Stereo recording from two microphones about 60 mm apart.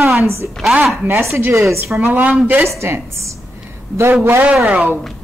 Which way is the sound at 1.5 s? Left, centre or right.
Right.